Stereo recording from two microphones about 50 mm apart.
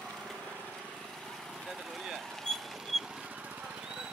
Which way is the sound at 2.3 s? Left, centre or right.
Centre.